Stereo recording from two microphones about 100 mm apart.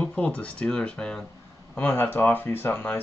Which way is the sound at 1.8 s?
20° left (ahead or behind).